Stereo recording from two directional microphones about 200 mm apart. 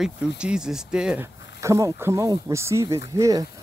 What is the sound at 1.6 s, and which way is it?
Speech, 15° right (ahead or behind).